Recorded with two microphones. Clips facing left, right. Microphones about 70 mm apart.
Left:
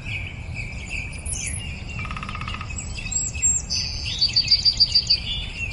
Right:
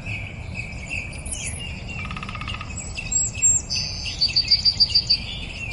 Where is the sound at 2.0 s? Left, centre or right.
Centre.